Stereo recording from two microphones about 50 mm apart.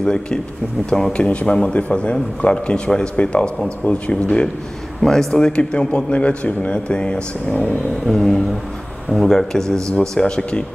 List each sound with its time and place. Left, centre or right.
0.0 s speech: centre
1.1 s a man's voice: left
5.0 s a man's voice: centre; by 7.7 s left
8.1 s speech: centre